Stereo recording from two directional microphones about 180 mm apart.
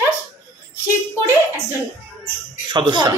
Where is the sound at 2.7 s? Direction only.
25° right (ahead or behind).